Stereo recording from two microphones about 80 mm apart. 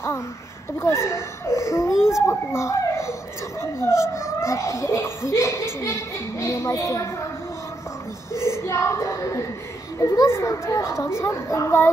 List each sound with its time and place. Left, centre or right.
0.7 s speech: left
2.0 s a child's voice: centre
2.2 s speech: left
8.3 s speech: left